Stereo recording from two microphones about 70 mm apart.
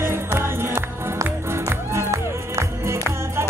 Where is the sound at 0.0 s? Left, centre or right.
Right.